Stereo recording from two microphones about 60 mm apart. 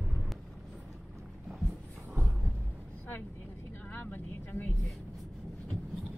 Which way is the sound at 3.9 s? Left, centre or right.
Left.